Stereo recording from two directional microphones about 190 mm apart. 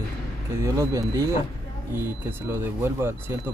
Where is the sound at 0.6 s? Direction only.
15° right (ahead or behind).